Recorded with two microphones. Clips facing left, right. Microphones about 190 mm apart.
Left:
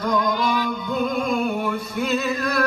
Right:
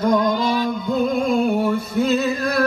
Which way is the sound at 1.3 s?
30° right (ahead or behind).